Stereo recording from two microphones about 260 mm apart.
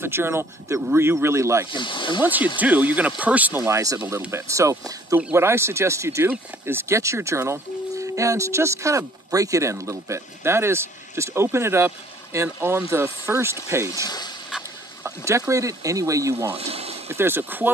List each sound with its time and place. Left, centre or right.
0.0 s speech: centre
1.7 s speech: centre
2.6 s speech: centre
14.0 s speech: centre
15.0 s speech: centre
16.5 s speech: right
17.1 s speech: centre